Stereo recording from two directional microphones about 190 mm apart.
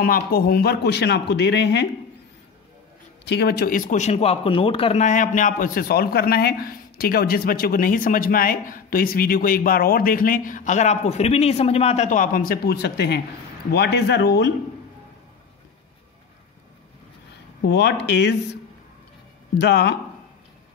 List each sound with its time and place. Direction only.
0.0 s speech: 50° left (ahead or behind)
3.3 s speech: 60° left (ahead or behind)
17.6 s speech: 60° left (ahead or behind)
19.6 s speech: 60° left (ahead or behind)